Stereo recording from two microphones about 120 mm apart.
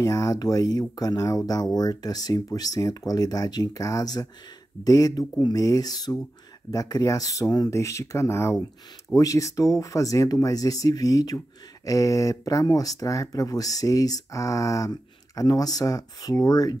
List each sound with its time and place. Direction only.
0.0 s speech: 30° left (ahead or behind)